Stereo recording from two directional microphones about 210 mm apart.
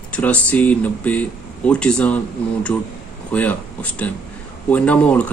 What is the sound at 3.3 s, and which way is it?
Speech, 5° left (ahead or behind).